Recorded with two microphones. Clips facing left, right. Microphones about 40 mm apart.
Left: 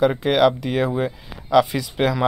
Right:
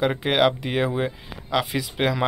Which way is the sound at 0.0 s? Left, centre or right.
Centre.